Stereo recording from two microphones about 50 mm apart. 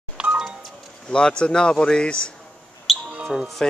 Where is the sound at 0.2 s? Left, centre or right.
Centre.